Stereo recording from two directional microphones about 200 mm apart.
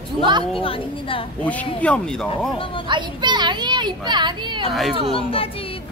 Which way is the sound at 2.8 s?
20° right (ahead or behind).